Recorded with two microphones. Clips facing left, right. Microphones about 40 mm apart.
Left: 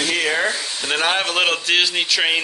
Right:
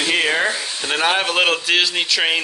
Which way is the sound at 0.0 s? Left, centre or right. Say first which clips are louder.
Right 2 dB; right.